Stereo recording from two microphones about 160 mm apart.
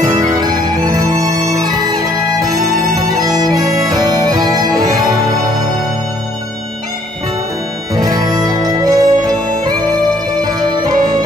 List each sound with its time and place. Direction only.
0.0 s music: 25° right (ahead or behind)
7.9 s music: 25° right (ahead or behind)